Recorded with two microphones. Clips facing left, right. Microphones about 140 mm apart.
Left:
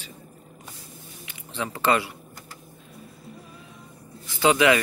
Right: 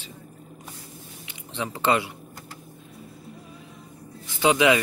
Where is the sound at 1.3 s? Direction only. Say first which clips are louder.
Even; 20° right (ahead or behind).